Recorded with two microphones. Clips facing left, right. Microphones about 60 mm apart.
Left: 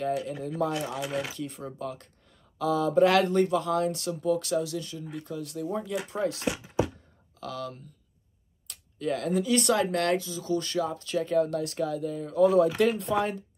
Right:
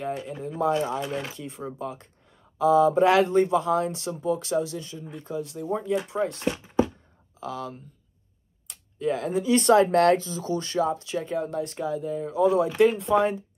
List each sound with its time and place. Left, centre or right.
0.0 s speech: right
1.0 s speech: centre
1.3 s speech: right
6.0 s speech: centre
7.3 s speech: right
11.3 s speech: centre